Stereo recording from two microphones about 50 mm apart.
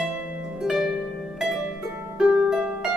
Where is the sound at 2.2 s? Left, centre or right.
Centre.